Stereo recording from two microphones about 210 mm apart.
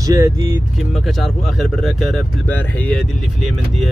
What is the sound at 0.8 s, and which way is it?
Speech, centre (ahead or behind).